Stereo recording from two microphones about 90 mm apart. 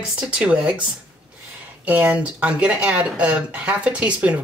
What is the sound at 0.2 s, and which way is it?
Speech, 10° right (ahead or behind).